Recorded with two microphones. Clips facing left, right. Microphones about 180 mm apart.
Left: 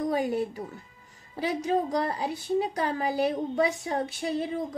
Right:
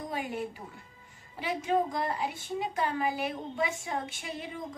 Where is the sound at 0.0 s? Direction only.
40° left (ahead or behind).